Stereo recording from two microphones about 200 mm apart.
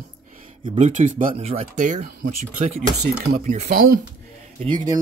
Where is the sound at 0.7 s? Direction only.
35° right (ahead or behind).